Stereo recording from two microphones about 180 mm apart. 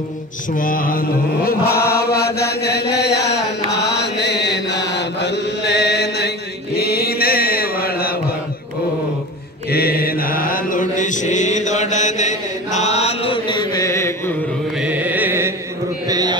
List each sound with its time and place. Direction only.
0.5 s mantra: 50° left (ahead or behind)
9.7 s mantra: 60° left (ahead or behind); by 14.3 s 15° left (ahead or behind)
14.8 s music: 10° right (ahead or behind)
16.1 s a sound: 20° right (ahead or behind)